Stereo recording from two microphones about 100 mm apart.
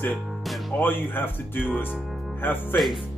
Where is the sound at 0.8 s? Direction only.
20° left (ahead or behind).